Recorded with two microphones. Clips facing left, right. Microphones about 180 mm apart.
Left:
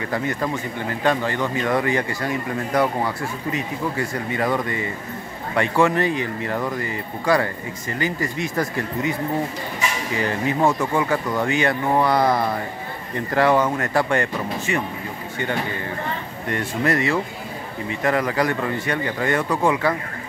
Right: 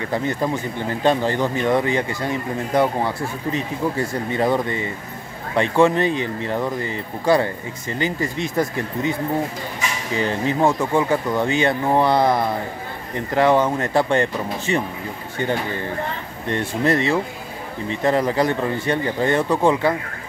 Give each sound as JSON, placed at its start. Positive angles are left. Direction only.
{"t": 0.1, "sound": "a man's voice", "side_deg": -25}
{"t": 4.4, "sound": "a man's voice", "side_deg": -25}
{"t": 10.1, "sound": "a man's voice", "side_deg": -25}
{"t": 10.6, "sound": "a man's voice", "side_deg": -10}
{"t": 16.4, "sound": "a man's voice", "side_deg": -25}